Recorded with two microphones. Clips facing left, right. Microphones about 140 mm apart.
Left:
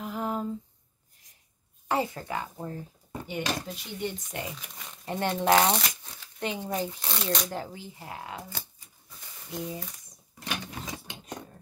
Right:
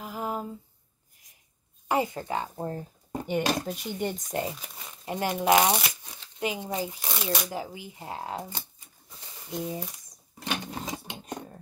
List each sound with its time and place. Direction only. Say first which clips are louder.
0.0 s a sound: left 1 dB; 5° right (ahead or behind)
1.9 s a sound: right 2 dB; 15° right (ahead or behind)
2.2 s speech: right 3 dB; 30° right (ahead or behind)
5.0 s speech: even; 10° right (ahead or behind)
8.0 s speech: right 6 dB; 30° right (ahead or behind)
9.5 s speech: right 3 dB; 20° right (ahead or behind)
10.6 s mechanisms: right 4 dB; 30° right (ahead or behind)